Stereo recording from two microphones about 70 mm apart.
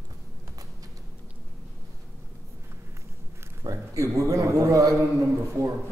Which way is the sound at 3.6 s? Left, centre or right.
Right.